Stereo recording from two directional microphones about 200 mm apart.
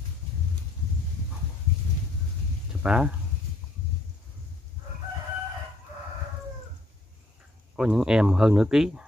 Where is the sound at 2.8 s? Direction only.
5° right (ahead or behind).